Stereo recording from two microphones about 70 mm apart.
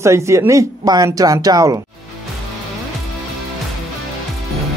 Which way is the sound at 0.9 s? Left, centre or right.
Right.